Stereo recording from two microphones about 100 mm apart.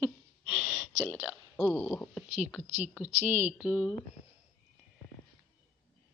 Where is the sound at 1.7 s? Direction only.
20° left (ahead or behind).